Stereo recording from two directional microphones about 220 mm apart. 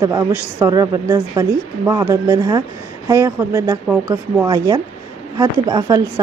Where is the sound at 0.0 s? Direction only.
15° right (ahead or behind).